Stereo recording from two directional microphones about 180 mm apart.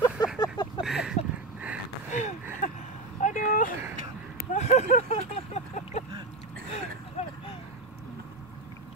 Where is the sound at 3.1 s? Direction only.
45° left (ahead or behind).